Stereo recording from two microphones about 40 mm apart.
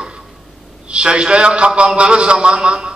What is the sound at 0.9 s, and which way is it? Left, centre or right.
A man's voice, right.